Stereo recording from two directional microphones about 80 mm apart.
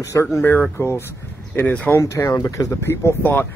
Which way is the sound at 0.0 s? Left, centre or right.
Left.